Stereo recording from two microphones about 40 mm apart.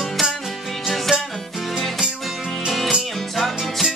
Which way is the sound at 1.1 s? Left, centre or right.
Right.